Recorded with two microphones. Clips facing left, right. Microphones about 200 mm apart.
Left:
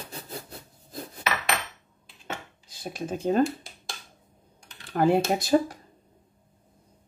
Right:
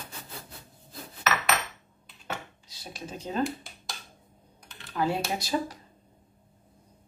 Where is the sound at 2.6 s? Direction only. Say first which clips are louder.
Left 7 dB; 50° left (ahead or behind).